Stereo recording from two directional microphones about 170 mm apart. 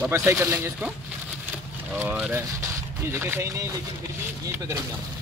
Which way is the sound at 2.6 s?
15° right (ahead or behind).